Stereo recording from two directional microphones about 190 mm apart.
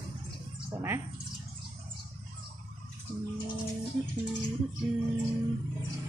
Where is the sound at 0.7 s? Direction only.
10° right (ahead or behind).